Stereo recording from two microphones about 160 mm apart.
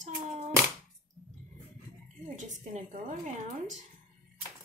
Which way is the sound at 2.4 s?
50° right (ahead or behind).